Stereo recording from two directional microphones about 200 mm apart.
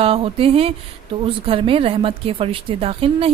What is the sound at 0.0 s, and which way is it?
Speech, 30° right (ahead or behind).